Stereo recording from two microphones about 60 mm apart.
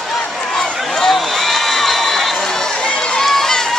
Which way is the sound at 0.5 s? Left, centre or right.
Centre.